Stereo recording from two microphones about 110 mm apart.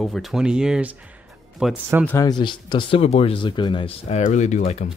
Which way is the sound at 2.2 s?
40° left (ahead or behind).